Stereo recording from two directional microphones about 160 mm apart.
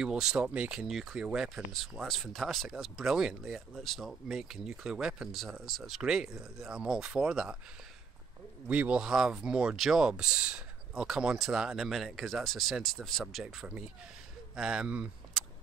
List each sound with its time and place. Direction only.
0.0 s speech: 5° right (ahead or behind)
8.6 s speech: 10° right (ahead or behind)